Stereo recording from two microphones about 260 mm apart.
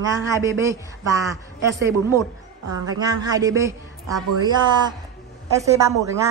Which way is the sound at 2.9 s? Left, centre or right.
Centre.